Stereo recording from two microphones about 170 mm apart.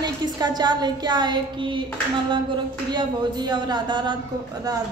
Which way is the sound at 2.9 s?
25° right (ahead or behind).